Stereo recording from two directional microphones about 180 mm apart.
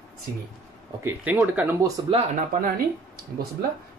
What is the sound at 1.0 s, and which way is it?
Speech, 10° right (ahead or behind).